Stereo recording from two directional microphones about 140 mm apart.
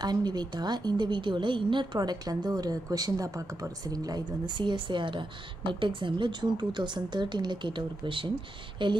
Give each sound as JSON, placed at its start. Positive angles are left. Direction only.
{"t": 0.0, "sound": "a woman's voice", "side_deg": -30}